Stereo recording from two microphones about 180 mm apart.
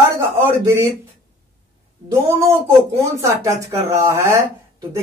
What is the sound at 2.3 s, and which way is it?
Speech, 15° right (ahead or behind).